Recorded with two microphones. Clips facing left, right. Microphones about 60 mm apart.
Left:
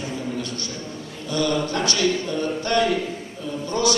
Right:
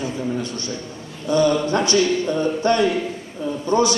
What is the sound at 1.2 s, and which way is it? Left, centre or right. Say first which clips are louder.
Speech: right 5 dB; right.